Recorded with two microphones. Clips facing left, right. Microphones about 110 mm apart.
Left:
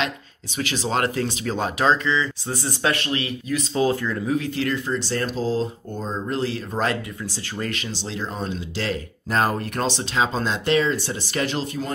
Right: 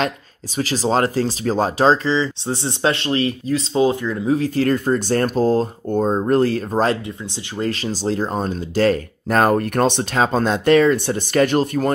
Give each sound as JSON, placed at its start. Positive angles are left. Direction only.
{"t": 0.6, "sound": "speech", "side_deg": -35}
{"t": 4.3, "sound": "speech", "side_deg": -40}
{"t": 6.7, "sound": "speech", "side_deg": -35}